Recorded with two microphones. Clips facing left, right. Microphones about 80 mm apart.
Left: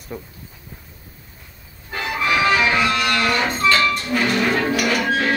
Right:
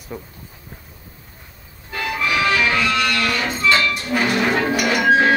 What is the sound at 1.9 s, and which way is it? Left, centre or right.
Music, left.